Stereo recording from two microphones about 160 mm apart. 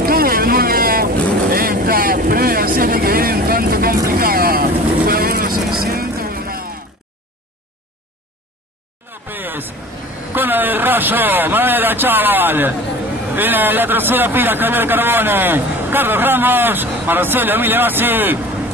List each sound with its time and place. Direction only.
0.0 s boat: 65° right (ahead or behind)
4.1 s vehicle: 65° right (ahead or behind)
5.8 s music: 70° right (ahead or behind)
9.0 s a sound: 15° right (ahead or behind)
13.3 s a man's voice: 10° right (ahead or behind)